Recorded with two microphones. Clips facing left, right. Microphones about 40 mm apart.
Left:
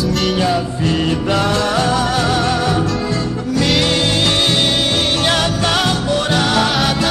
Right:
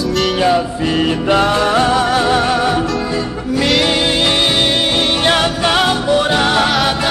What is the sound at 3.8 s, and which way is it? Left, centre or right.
Music, centre.